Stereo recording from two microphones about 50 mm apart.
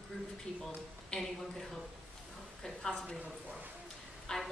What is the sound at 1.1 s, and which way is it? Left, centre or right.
Speech, centre.